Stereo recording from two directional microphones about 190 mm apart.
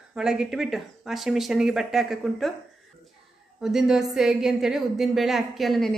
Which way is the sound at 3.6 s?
Centre (ahead or behind).